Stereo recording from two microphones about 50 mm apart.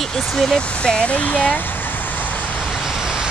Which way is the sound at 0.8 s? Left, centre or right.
Left.